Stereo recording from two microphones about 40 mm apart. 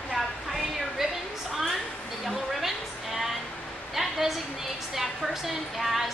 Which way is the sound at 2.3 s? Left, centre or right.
Centre.